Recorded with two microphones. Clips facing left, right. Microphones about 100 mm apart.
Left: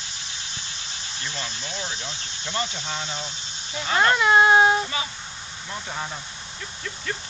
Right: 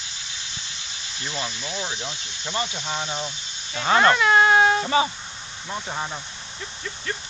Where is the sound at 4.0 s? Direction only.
15° left (ahead or behind).